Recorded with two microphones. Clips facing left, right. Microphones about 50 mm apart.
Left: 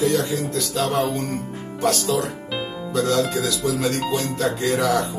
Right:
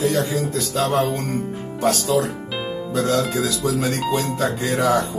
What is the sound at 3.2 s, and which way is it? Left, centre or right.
Speech, centre.